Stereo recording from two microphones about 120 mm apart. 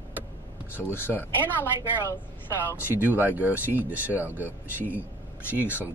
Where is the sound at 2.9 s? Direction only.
15° right (ahead or behind).